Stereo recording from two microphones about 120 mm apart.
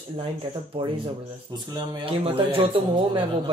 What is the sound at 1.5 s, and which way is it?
Speech, 35° right (ahead or behind).